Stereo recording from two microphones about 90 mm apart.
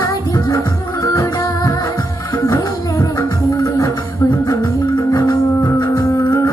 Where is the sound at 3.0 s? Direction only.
35° left (ahead or behind).